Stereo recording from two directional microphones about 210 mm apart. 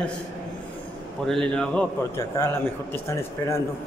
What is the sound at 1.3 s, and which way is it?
A man's voice, 5° left (ahead or behind).